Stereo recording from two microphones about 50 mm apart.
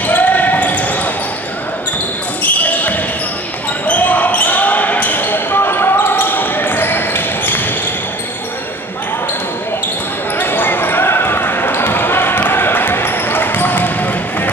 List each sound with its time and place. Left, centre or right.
0.0 s basketball bounce: left
2.4 s basketball bounce: left
10.3 s basketball bounce: left